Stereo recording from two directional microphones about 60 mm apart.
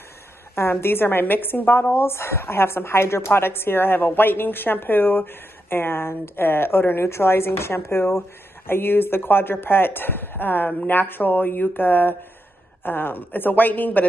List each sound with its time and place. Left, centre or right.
0.6 s a woman's voice: left